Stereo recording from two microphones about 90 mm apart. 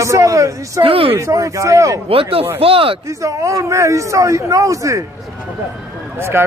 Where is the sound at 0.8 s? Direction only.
90° right.